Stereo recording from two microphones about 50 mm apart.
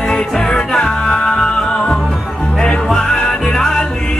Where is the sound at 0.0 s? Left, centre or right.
Left.